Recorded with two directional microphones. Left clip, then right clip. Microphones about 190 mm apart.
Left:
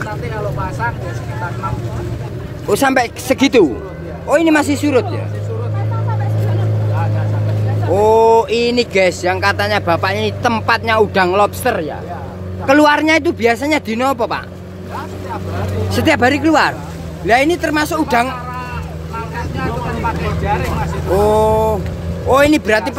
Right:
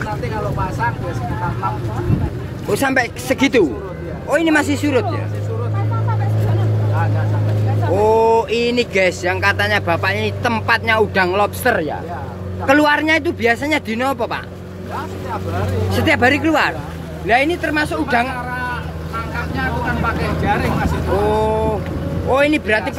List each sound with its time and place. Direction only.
2.7 s speech: 20° left (ahead or behind)
7.9 s speech: 15° left (ahead or behind)
11.6 s speech: 5° left (ahead or behind)
12.8 s speech: 25° left (ahead or behind)
15.9 s speech: 25° left (ahead or behind)
21.3 s speech: 25° left (ahead or behind)